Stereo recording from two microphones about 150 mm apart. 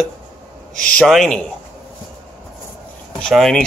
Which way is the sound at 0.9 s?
Centre (ahead or behind).